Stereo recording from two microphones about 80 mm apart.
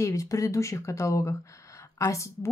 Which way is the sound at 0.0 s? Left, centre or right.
Left.